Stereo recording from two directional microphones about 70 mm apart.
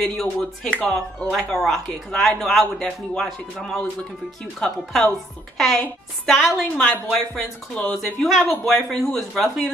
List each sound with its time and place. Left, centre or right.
0.0 s a man's voice: centre
0.7 s a man's voice: centre
0.9 s a woman's voice: centre